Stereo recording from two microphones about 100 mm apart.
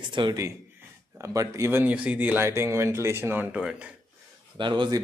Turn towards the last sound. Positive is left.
turn(degrees=-50)  # may be behind; listen again after turning